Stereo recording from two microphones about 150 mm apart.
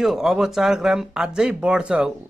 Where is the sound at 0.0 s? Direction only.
Centre (ahead or behind).